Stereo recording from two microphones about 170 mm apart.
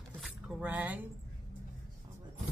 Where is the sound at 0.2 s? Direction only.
5° right (ahead or behind).